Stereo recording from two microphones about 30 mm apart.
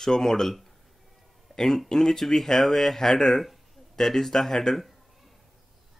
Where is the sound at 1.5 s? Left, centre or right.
Centre.